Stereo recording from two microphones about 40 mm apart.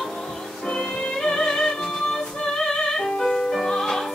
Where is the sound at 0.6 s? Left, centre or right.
Centre.